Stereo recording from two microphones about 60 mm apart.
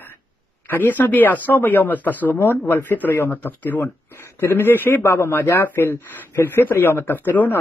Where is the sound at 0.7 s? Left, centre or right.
Left.